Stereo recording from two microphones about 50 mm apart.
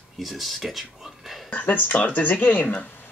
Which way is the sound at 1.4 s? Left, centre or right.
Left.